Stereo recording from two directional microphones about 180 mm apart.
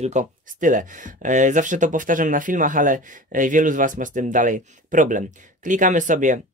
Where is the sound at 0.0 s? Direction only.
45° right (ahead or behind).